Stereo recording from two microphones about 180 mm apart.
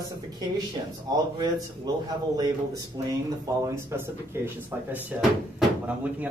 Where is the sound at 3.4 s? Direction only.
15° right (ahead or behind).